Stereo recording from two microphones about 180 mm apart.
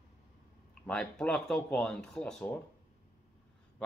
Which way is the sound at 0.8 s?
5° left (ahead or behind).